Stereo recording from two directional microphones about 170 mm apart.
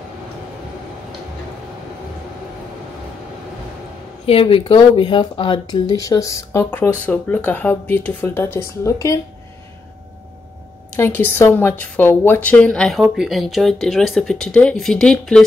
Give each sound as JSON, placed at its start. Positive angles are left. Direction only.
{"t": 4.3, "sound": "speech", "side_deg": 30}
{"t": 11.0, "sound": "a woman's voice", "side_deg": 10}